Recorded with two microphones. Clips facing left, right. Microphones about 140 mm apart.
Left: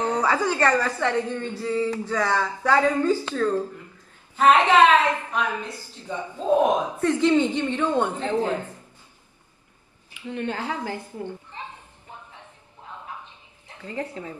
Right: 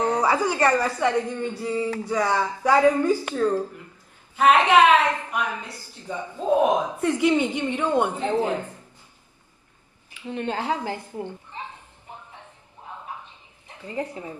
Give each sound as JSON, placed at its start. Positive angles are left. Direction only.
{"t": 0.0, "sound": "a woman's voice", "side_deg": -10}
{"t": 10.2, "sound": "a woman's voice", "side_deg": -20}
{"t": 13.7, "sound": "a woman's voice", "side_deg": -10}